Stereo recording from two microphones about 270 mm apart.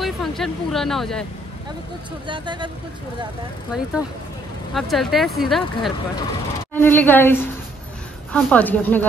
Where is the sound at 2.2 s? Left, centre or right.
Centre.